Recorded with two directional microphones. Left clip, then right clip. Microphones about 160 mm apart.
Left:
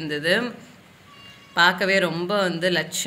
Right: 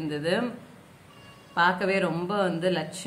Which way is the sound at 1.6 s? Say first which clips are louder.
Left 5 dB; 15° left (ahead or behind).